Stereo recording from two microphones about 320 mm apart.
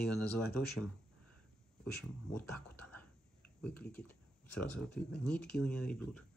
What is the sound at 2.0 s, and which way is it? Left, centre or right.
Speech, centre.